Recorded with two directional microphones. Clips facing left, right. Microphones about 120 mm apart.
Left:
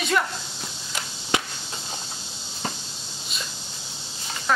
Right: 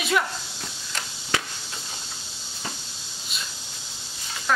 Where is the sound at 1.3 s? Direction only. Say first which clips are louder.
Left 2 dB; 20° left (ahead or behind).